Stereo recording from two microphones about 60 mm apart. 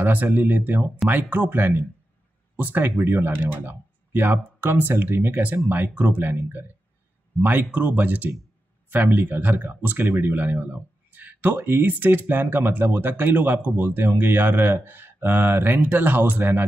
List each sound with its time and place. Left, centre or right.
0.0 s speech: right